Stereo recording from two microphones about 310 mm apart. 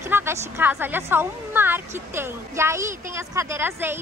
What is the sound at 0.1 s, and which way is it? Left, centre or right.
A woman's voice, centre.